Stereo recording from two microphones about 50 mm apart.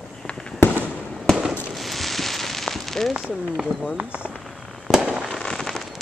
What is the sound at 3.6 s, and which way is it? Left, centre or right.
Speech, centre.